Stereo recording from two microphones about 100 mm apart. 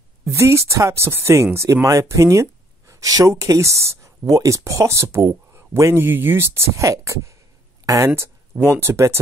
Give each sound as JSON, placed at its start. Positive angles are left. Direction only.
{"t": 0.2, "sound": "speech", "side_deg": -30}